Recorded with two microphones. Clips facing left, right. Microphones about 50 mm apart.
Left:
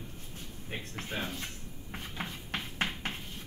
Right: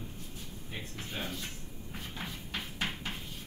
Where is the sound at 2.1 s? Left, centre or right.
Left.